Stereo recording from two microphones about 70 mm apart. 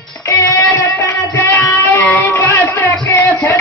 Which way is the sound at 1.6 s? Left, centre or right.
Left.